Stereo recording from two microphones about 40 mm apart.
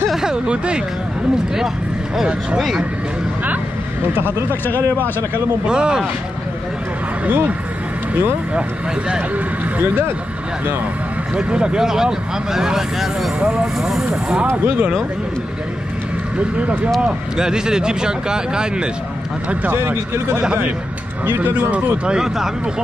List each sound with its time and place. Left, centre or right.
0.5 s speech: right
4.1 s speech: right
5.7 s speech: right
7.2 s speech: right
11.3 s speech: right
13.7 s speech: centre
14.5 s speech: right
16.3 s speech: right
17.0 s speech: centre
19.7 s speech: right
21.3 s speech: right
21.9 s speech: right